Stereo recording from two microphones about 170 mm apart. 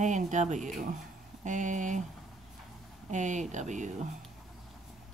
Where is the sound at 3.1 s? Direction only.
45° right (ahead or behind).